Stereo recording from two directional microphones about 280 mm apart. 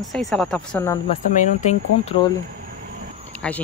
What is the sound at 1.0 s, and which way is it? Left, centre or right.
Speech, left.